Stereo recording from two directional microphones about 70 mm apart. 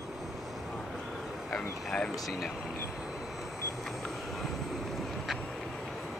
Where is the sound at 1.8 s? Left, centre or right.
Centre.